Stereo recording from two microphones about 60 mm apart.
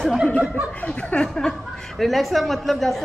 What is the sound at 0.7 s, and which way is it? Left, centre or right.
Chuckle, left.